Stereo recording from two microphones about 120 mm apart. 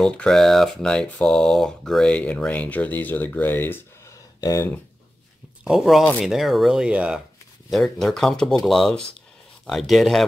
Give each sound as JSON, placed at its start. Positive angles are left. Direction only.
{"t": 0.0, "sound": "speech", "side_deg": 5}
{"t": 4.4, "sound": "speech", "side_deg": 30}
{"t": 5.6, "sound": "speech", "side_deg": -5}